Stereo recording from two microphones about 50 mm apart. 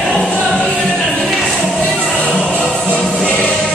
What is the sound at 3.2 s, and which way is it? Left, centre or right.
Music, left.